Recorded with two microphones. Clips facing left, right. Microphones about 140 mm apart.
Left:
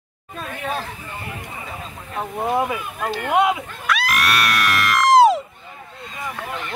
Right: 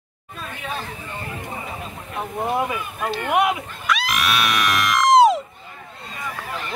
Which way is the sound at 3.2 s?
20° left (ahead or behind).